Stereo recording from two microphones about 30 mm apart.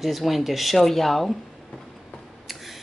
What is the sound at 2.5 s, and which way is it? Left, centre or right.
Scissors, centre.